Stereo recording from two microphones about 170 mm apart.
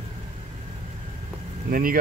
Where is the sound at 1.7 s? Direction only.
55° right (ahead or behind).